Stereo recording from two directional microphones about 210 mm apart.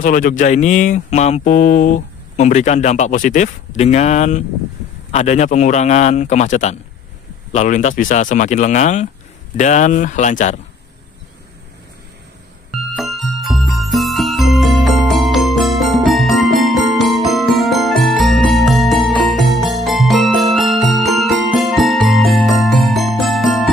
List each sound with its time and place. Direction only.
0.0 s speech: 40° left (ahead or behind)
12.9 s music: centre (ahead or behind)